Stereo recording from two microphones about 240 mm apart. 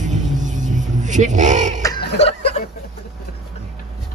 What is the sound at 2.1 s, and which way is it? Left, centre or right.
Chuckle, left.